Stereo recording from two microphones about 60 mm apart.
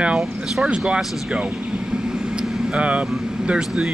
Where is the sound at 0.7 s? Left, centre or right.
Centre.